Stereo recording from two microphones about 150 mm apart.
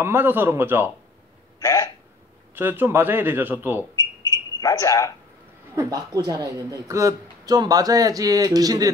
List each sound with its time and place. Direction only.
0.0 s speech: 15° right (ahead or behind)
1.6 s speech: 20° left (ahead or behind)
2.5 s speech: 15° right (ahead or behind)
4.3 s a sound: 20° left (ahead or behind)
5.8 s a man's voice: 25° right (ahead or behind)